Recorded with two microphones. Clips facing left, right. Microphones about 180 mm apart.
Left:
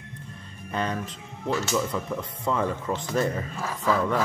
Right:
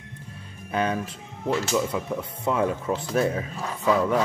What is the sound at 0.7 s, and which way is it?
Speech, 10° right (ahead or behind).